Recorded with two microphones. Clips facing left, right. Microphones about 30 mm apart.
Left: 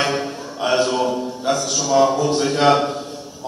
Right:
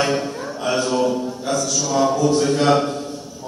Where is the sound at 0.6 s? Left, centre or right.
Left.